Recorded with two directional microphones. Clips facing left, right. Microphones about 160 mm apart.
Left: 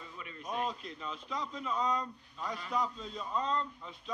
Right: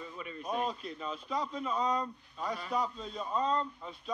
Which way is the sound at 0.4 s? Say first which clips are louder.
Right 2 dB; 35° right (ahead or behind).